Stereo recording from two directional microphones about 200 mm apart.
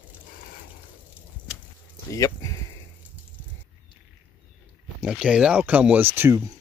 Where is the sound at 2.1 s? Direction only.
15° left (ahead or behind).